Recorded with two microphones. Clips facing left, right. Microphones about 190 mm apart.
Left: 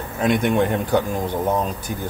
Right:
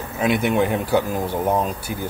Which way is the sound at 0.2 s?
5° right (ahead or behind).